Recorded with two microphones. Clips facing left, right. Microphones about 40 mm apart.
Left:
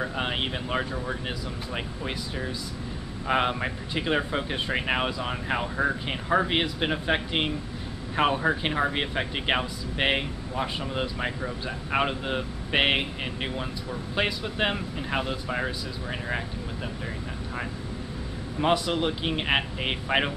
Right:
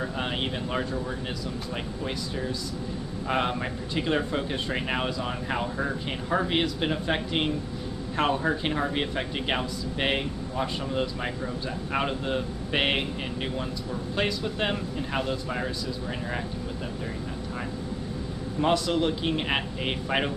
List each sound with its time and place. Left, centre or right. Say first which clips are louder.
0.0 s speech: left 1 dB; centre
3.3 s speech: left 2 dB; centre
18.6 s speech: even; centre